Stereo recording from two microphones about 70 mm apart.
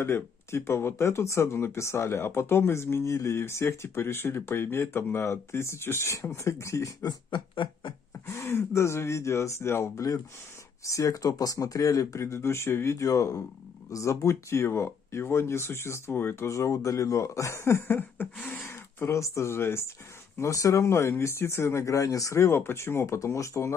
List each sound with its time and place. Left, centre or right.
0.0 s speech: left
7.0 s speech: left
8.3 s speech: left
16.4 s speech: left
20.3 s speech: left